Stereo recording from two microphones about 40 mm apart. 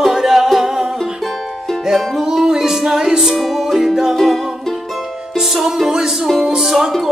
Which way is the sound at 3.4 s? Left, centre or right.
Centre.